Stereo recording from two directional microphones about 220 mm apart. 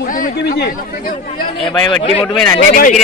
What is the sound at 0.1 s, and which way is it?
A man's voice, 40° left (ahead or behind).